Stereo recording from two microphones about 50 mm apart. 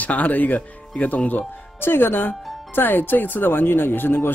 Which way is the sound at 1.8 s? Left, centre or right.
Left.